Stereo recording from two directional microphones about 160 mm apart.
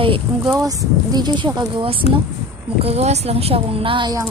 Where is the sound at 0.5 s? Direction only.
20° right (ahead or behind).